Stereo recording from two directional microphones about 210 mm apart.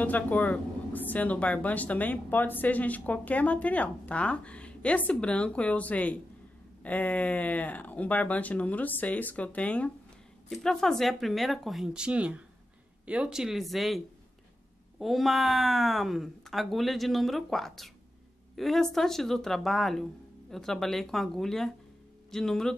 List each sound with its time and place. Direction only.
0.0 s speech: 5° left (ahead or behind)